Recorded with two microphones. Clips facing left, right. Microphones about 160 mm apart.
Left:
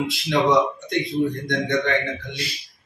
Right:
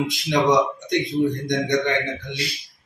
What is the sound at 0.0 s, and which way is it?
Speech, 15° right (ahead or behind).